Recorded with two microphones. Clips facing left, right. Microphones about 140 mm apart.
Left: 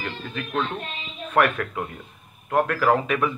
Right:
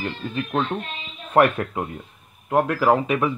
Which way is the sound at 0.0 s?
30° right (ahead or behind).